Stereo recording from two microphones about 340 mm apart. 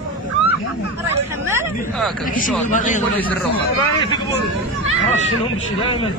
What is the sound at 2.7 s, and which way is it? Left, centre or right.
Speech, left.